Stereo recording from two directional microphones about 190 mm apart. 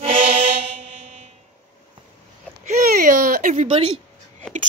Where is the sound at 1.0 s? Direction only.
40° right (ahead or behind).